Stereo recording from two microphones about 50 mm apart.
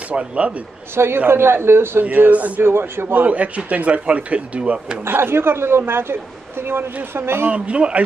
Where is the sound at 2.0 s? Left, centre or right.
Right.